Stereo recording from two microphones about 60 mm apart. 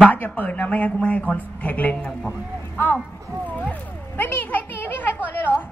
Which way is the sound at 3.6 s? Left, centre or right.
Left.